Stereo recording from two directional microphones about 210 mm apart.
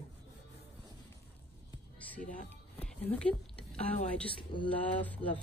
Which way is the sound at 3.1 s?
5° left (ahead or behind).